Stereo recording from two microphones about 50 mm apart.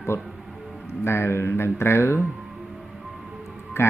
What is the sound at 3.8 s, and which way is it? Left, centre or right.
Speech, left.